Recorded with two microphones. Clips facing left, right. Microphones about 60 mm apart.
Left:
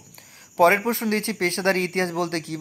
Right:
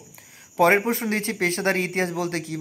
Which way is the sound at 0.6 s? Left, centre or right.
Centre.